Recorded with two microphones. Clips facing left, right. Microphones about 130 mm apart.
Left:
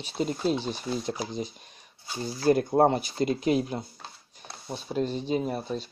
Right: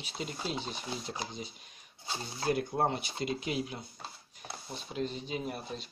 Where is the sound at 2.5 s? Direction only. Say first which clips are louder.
Left 9 dB; 40° left (ahead or behind).